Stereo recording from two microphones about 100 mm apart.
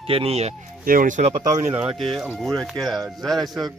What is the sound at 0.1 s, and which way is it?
Speech, 85° right.